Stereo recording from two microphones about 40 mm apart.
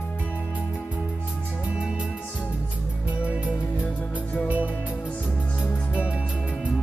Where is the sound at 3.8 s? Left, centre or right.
Left.